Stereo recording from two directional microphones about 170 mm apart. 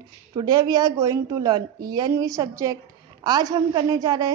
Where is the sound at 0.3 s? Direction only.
25° right (ahead or behind).